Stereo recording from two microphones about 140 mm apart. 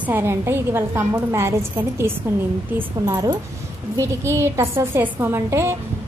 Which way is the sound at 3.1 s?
20° right (ahead or behind).